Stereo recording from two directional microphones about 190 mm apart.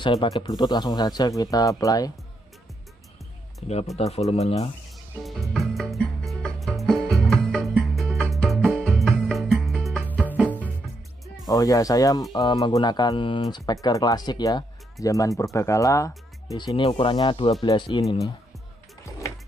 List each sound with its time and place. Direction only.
0.0 s speech: 25° left (ahead or behind)
3.6 s speech: 35° left (ahead or behind)
5.2 s music: centre (ahead or behind)
11.4 s speech: 20° left (ahead or behind)